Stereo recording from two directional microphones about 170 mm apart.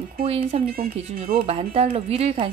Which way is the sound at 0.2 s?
35° right (ahead or behind).